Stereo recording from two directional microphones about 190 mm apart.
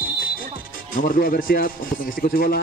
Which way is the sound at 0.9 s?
45° left (ahead or behind).